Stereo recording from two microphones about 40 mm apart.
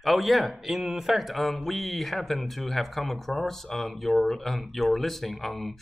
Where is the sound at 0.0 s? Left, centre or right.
Centre.